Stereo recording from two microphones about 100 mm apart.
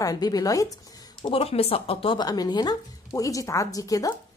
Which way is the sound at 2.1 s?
40° left (ahead or behind).